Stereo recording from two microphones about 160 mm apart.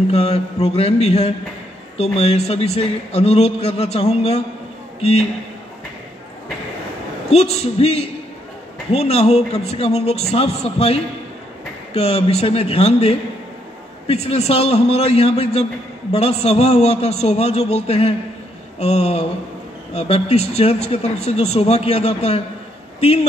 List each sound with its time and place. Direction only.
0.1 s speech: 40° left (ahead or behind)
7.2 s speech: 40° left (ahead or behind)